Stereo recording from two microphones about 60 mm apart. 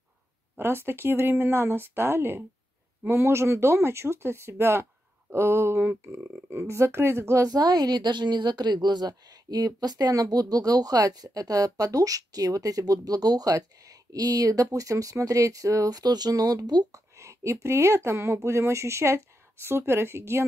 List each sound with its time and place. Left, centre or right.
0.6 s speech: right
7.4 s a woman's voice: right
9.3 s speech: right